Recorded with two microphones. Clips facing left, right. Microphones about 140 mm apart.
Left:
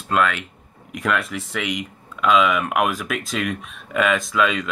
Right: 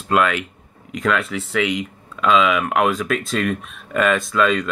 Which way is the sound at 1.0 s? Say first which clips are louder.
Right 2 dB; 10° left (ahead or behind).